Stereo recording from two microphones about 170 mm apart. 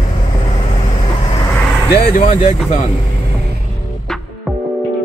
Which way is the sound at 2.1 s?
50° left (ahead or behind).